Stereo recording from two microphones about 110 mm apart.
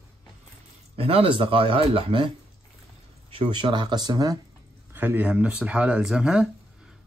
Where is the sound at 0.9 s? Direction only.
60° right (ahead or behind); by 4.4 s 35° right (ahead or behind).